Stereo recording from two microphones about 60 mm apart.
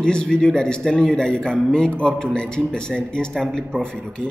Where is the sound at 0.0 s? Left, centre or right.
Centre.